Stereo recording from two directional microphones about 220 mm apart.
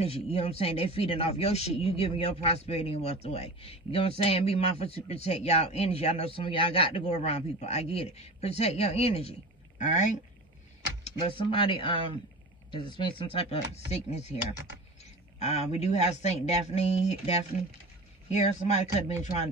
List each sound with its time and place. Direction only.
0.0 s speech: 25° left (ahead or behind)
11.1 s speech: 25° left (ahead or behind)